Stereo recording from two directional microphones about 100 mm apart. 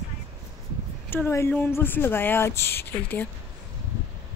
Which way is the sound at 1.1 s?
25° left (ahead or behind).